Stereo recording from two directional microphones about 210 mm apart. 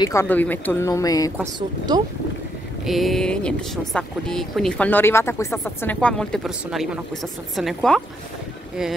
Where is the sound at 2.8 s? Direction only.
Centre (ahead or behind).